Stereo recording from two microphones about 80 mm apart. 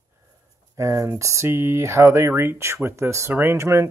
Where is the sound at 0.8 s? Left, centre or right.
Right.